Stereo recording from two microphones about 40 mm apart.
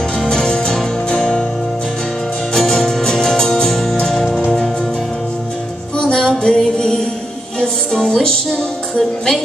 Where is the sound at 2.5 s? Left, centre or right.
Centre.